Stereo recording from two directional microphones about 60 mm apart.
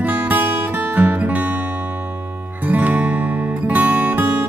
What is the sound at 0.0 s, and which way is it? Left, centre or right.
Music, right.